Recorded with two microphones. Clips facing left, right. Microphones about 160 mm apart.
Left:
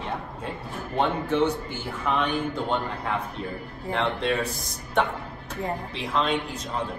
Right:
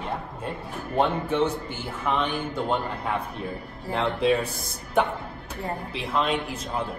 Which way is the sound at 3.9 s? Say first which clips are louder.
Right 3 dB; 5° right (ahead or behind).